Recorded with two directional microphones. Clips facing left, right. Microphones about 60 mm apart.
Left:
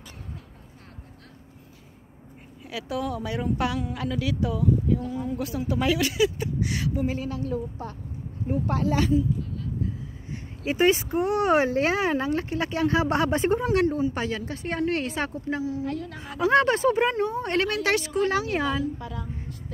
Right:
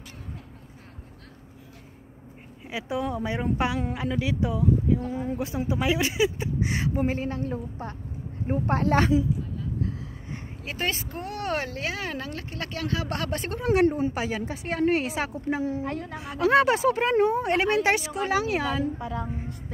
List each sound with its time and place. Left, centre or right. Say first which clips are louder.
2.6 s speech: right 1 dB; right
5.0 s a woman's voice: even; right
10.6 s speech: left 9 dB; centre
13.8 s a woman's voice: right 1 dB; right
14.1 s a woman's voice: even; centre
15.7 s a woman's voice: even; right
16.2 s a woman's voice: even; centre
17.6 s speech: right 2 dB; right
18.0 s a woman's voice: left 1 dB; centre
18.9 s speech: right 4 dB; right